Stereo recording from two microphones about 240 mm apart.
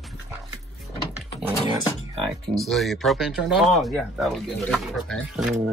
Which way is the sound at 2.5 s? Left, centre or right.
Centre.